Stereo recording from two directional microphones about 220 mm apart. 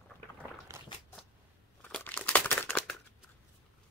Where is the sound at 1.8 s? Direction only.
10° left (ahead or behind).